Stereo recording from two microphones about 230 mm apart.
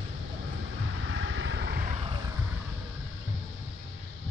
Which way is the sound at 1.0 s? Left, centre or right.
Right.